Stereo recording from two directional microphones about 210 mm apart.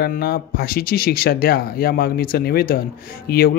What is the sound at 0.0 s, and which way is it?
Speech, 50° left (ahead or behind).